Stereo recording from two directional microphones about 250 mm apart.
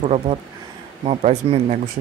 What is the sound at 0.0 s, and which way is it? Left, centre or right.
Speech, right.